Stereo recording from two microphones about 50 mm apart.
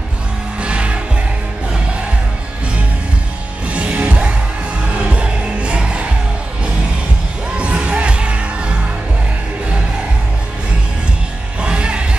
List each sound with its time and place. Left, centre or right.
0.6 s music: right
3.6 s music: right
7.5 s music: right
11.6 s music: right